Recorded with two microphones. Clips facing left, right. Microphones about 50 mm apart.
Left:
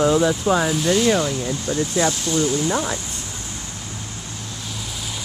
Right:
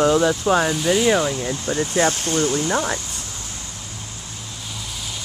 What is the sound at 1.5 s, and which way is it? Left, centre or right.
Speech, right.